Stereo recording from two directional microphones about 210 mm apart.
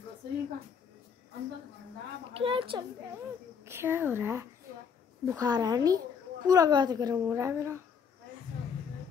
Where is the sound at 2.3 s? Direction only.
25° right (ahead or behind).